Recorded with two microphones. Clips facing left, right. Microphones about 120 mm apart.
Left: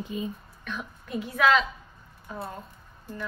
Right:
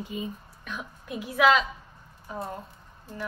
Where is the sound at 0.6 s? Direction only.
10° right (ahead or behind).